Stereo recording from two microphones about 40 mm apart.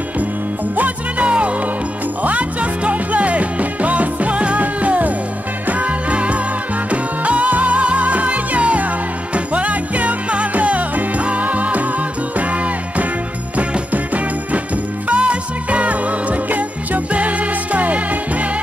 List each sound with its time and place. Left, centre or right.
0.7 s music: right